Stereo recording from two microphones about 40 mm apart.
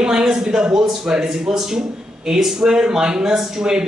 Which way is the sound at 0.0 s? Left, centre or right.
Centre.